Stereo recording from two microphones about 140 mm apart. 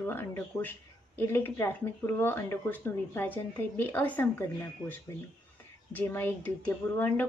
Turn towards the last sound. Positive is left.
turn(degrees=15)  # may be behind; listen again after turning